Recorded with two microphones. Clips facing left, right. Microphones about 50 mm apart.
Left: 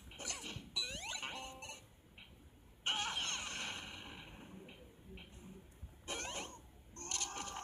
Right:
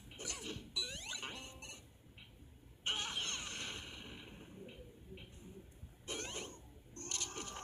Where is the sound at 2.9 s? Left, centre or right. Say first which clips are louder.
Left 1 dB; left.